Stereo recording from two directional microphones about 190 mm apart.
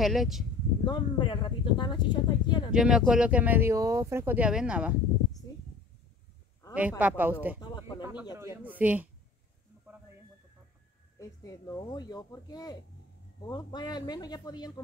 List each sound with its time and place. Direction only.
0.0 s speech: centre (ahead or behind)
0.8 s speech: 25° left (ahead or behind)
2.7 s speech: 5° right (ahead or behind)
6.7 s speech: 5° right (ahead or behind)
7.6 s speech: 20° left (ahead or behind)
8.0 s speech: 5° right (ahead or behind)
11.1 s speech: 15° left (ahead or behind)